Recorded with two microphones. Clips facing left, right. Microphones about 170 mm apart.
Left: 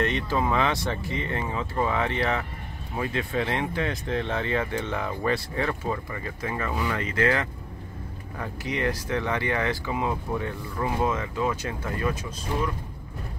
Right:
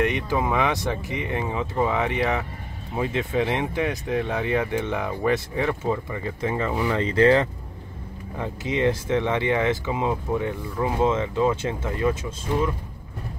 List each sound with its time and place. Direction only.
0.0 s speech: 15° right (ahead or behind)